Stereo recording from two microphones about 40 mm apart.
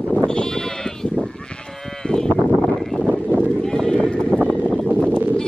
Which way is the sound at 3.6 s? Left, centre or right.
Centre.